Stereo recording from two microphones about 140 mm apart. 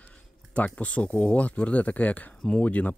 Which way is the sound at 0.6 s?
10° left (ahead or behind).